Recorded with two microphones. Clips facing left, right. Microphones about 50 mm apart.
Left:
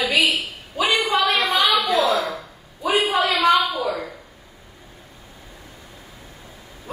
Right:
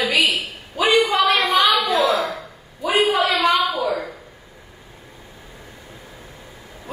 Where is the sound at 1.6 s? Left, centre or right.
Right.